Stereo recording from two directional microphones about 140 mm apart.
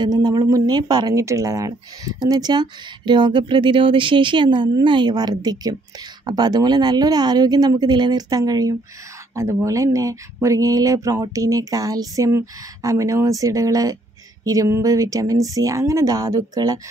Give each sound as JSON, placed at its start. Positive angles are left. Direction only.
{"t": 0.0, "sound": "speech", "side_deg": -30}